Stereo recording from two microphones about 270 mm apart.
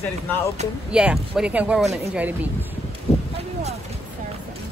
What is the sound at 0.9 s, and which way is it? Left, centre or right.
Speech, centre.